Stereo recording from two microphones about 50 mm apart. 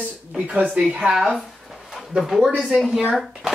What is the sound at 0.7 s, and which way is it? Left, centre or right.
Speech, centre.